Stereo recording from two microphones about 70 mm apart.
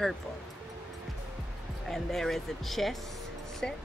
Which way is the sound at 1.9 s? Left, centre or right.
Centre.